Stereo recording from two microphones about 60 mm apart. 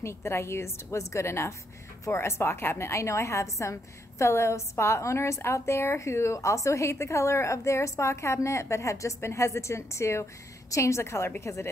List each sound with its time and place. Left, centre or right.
0.0 s a woman's voice: left
2.9 s a woman's voice: left